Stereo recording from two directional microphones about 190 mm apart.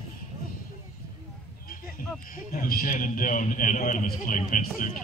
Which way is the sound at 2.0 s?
50° left (ahead or behind).